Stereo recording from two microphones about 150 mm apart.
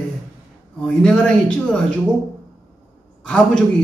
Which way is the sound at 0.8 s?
5° left (ahead or behind).